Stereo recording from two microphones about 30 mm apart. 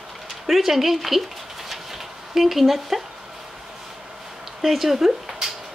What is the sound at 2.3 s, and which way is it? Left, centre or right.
Speech, centre.